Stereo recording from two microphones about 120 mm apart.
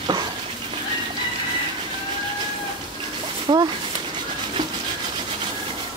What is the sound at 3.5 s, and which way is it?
Speech, 40° right (ahead or behind).